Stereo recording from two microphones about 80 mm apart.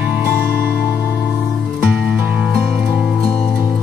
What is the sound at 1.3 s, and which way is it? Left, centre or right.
Music, centre.